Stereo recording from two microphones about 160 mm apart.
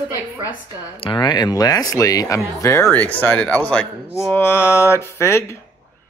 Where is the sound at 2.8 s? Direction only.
10° left (ahead or behind).